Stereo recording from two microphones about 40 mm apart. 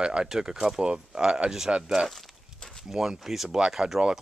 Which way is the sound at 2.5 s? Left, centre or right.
Centre.